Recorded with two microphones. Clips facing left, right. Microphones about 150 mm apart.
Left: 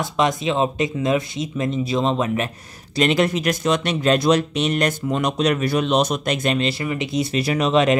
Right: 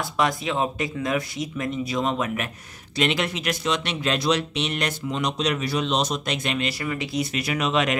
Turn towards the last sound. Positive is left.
turn(degrees=35)  # may be behind; listen again after turning